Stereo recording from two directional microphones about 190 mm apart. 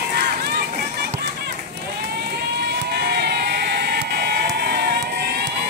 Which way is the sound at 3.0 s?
60° right (ahead or behind).